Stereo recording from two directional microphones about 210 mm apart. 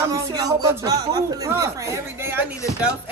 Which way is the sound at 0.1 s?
15° right (ahead or behind).